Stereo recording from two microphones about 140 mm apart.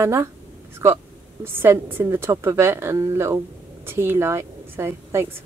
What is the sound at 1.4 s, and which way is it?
Speech, 15° right (ahead or behind).